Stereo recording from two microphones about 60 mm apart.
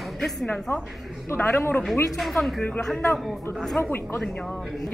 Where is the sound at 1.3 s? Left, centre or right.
Left.